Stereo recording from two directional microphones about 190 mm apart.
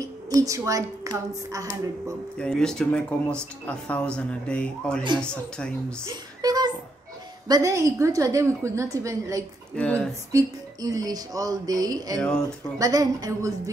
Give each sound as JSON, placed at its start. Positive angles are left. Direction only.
{"t": 0.0, "sound": "a woman's voice", "side_deg": -20}
{"t": 2.3, "sound": "speech", "side_deg": 5}
{"t": 6.0, "sound": "a sound", "side_deg": -20}
{"t": 7.4, "sound": "a woman's voice", "side_deg": -20}
{"t": 9.8, "sound": "speech", "side_deg": 5}
{"t": 10.3, "sound": "speech", "side_deg": -20}
{"t": 12.2, "sound": "speech", "side_deg": 5}
{"t": 12.7, "sound": "speech", "side_deg": -20}